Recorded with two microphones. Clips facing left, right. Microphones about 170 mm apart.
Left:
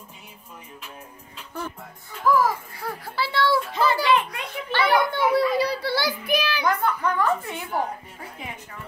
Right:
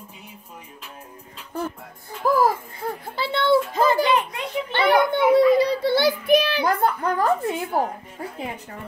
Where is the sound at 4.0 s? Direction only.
25° right (ahead or behind); by 7.9 s 40° right (ahead or behind).